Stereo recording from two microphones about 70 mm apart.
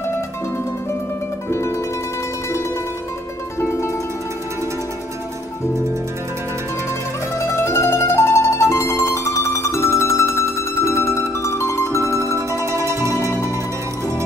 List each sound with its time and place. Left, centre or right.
7.3 s mandolin: left
12.4 s music: right